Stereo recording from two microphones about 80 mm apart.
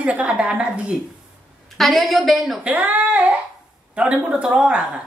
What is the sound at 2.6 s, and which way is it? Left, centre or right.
A woman's voice, right.